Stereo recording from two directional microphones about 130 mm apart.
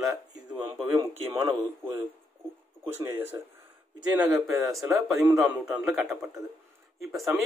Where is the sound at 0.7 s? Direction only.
45° right (ahead or behind).